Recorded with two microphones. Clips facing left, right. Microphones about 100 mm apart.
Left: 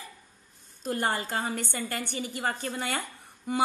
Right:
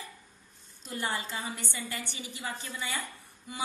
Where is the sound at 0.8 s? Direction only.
55° left (ahead or behind).